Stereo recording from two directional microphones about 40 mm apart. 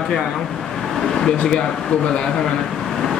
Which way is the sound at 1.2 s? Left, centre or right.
Centre.